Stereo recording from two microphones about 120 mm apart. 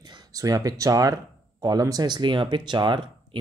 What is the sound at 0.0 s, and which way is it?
Speech, 35° right (ahead or behind).